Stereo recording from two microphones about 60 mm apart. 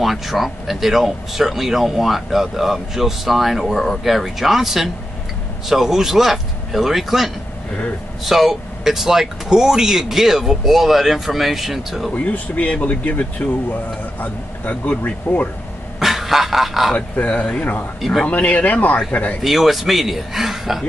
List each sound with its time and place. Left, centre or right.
0.0 s speech: centre
8.3 s speech: centre
12.1 s speech: left
16.0 s speech: centre
16.9 s speech: left
19.4 s speech: centre